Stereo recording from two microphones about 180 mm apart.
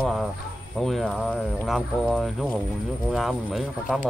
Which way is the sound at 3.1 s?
Centre (ahead or behind).